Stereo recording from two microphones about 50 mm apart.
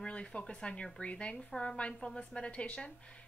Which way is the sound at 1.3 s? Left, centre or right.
Centre.